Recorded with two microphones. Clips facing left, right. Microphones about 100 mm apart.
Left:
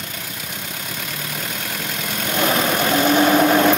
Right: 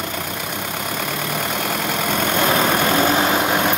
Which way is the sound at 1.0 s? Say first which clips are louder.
Right 6 dB; 65° right (ahead or behind).